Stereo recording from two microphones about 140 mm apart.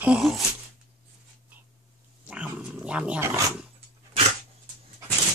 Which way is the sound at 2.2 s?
10° right (ahead or behind).